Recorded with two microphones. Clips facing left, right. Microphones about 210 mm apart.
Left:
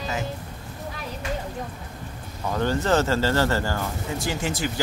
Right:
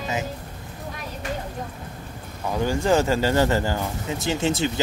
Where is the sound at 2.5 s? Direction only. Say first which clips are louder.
Right 1 dB; 10° right (ahead or behind).